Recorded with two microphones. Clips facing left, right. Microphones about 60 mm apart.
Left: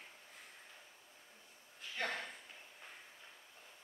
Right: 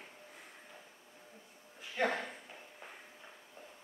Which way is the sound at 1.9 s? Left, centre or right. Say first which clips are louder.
Right 7 dB; centre.